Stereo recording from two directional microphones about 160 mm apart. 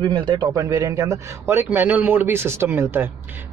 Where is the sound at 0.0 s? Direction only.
30° right (ahead or behind).